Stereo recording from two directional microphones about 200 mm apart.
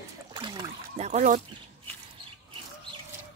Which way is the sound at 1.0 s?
40° right (ahead or behind).